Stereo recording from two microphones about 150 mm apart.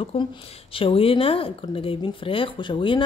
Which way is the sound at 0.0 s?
35° left (ahead or behind).